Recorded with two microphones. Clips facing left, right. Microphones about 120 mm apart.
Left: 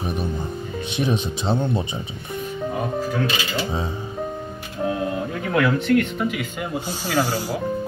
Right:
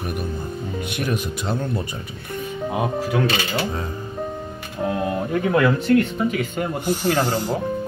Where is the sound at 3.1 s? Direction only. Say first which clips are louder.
Right 3 dB; 60° right (ahead or behind).